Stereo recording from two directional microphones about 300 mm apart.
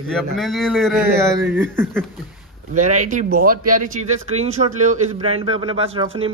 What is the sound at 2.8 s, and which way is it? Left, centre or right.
Speech, right.